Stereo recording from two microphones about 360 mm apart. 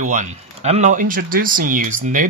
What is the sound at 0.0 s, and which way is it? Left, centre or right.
Speech, right.